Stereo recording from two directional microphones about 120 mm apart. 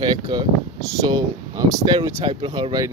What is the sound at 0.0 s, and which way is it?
Speech, 35° right (ahead or behind).